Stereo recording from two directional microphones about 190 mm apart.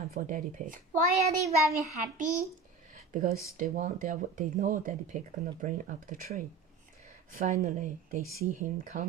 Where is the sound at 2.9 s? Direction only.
45° right (ahead or behind).